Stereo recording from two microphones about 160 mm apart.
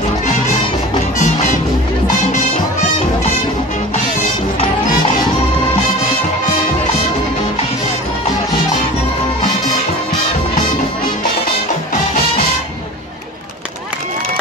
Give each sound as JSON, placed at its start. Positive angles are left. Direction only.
{"t": 1.1, "sound": "music", "side_deg": 50}